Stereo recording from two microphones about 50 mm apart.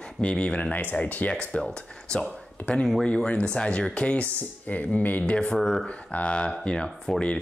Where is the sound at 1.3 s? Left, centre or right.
Centre; by 5.4 s left.